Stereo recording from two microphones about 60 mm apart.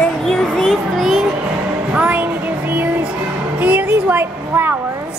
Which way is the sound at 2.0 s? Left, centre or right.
Right.